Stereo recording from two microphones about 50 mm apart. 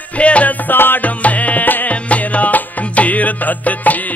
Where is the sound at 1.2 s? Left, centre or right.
Left.